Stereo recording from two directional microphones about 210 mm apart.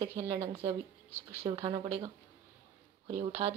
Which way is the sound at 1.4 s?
25° right (ahead or behind).